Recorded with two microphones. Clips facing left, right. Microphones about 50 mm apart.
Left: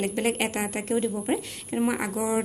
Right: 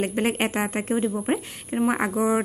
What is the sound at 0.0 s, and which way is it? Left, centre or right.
A woman's voice, right.